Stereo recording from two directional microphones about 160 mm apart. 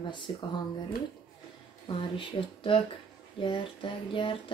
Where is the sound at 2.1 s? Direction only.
35° left (ahead or behind).